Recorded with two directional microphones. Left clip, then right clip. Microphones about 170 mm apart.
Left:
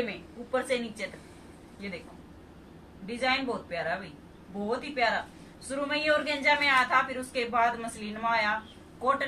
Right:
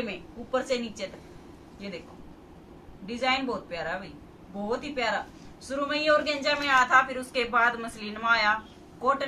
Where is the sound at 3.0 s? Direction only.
Centre (ahead or behind).